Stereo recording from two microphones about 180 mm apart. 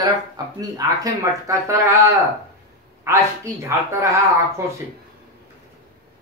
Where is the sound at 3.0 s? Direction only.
15° right (ahead or behind).